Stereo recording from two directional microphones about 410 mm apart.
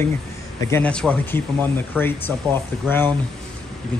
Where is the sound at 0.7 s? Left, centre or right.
Centre.